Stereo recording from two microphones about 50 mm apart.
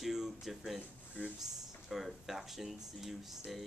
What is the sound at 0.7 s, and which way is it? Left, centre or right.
Speech, right.